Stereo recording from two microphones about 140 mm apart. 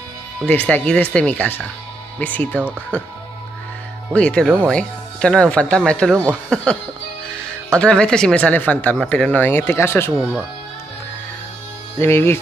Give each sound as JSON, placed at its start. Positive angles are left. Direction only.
{"t": 0.5, "sound": "speech", "side_deg": 10}
{"t": 4.1, "sound": "speech", "side_deg": 5}
{"t": 12.0, "sound": "speech", "side_deg": 15}